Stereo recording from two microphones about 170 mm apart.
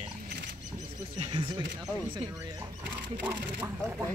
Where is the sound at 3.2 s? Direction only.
10° right (ahead or behind).